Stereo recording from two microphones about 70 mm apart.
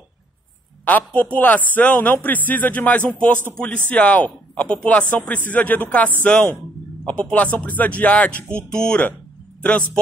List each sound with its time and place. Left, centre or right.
0.8 s a man's voice: left